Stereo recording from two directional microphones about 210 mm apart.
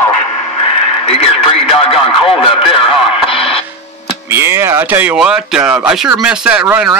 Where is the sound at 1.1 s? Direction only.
25° left (ahead or behind).